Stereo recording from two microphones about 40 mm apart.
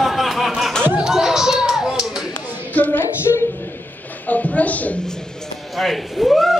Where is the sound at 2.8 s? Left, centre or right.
Left.